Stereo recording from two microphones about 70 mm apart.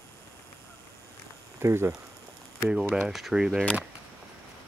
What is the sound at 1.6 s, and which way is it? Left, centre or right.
Speech, right.